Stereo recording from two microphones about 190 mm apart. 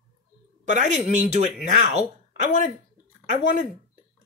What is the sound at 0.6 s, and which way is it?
Speech, 40° right (ahead or behind).